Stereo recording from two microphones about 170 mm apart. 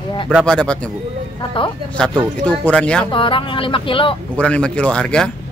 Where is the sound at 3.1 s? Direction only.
30° left (ahead or behind).